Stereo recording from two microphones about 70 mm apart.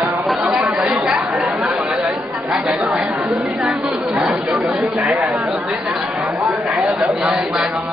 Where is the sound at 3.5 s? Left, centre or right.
Centre.